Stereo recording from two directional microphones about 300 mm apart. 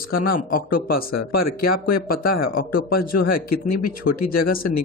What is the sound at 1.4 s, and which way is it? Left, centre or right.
Speech, left.